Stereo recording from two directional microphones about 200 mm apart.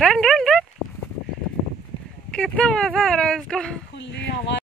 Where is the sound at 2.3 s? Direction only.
5° left (ahead or behind).